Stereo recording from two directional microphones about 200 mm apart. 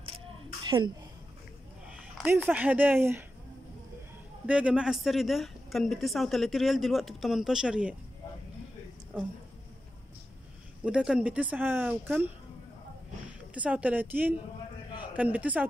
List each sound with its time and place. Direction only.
0.7 s speech: 20° right (ahead or behind)
2.1 s speech: 5° right (ahead or behind)
4.5 s speech: 5° right (ahead or behind)
10.8 s speech: 5° right (ahead or behind)
13.6 s speech: 5° right (ahead or behind)